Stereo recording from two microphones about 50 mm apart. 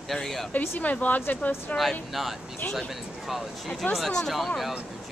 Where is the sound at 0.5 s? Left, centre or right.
Left.